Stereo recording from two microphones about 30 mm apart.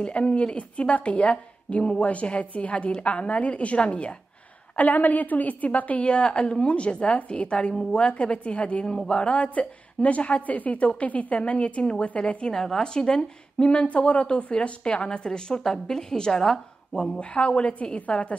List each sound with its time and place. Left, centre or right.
0.0 s a woman's voice: left
2.9 s a woman's voice: left
4.7 s a woman's voice: left
6.1 s a woman's voice: left
8.8 s speech: centre
9.3 s a woman's voice: left
12.5 s speech: centre
12.8 s speech: left
13.8 s a woman's voice: left
14.2 s a woman's voice: left; by 17.2 s centre
17.2 s a woman's voice: left